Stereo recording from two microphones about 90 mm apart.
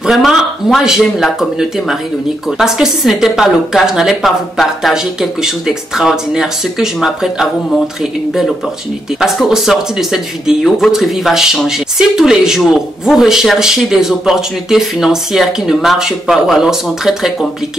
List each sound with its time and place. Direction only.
0.0 s speech: centre (ahead or behind)